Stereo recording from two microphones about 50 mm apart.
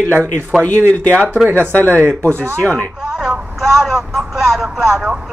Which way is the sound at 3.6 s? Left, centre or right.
Centre.